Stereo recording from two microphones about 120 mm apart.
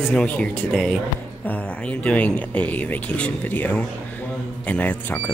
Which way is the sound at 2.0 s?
10° left (ahead or behind).